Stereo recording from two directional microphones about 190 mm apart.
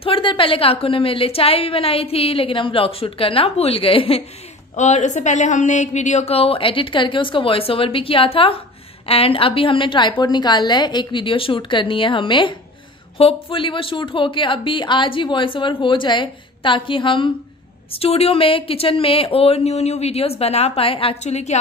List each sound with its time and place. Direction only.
0.0 s a woman's voice: 25° left (ahead or behind)